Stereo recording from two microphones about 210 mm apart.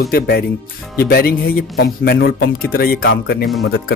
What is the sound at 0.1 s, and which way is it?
Speech, 45° left (ahead or behind).